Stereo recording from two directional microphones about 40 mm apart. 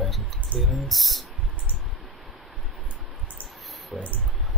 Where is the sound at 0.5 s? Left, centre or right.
Right.